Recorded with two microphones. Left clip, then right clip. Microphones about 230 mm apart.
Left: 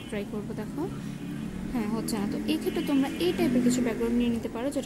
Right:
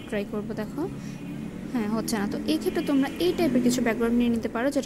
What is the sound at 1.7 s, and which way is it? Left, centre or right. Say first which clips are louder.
A woman's voice: right 3 dB; centre.